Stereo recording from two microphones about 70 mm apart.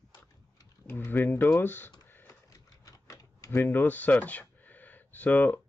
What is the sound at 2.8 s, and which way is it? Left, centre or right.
Typewriter, left.